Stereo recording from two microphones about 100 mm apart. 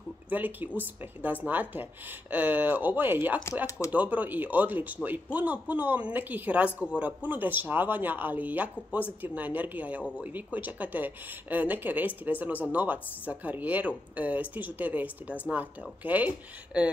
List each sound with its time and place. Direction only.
0.3 s speech: 15° right (ahead or behind)